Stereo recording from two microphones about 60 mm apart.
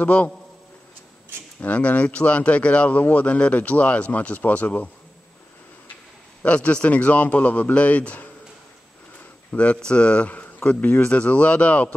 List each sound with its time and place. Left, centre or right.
0.0 s speech: left
1.6 s speech: left
6.4 s speech: left
9.5 s speech: left